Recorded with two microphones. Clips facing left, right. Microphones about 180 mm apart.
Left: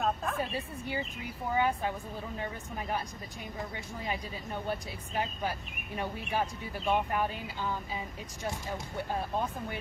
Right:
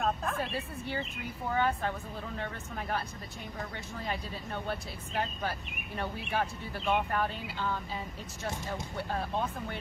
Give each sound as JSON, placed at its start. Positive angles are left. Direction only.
{"t": 0.0, "sound": "a woman's voice", "side_deg": 0}
{"t": 9.1, "sound": "speech", "side_deg": 5}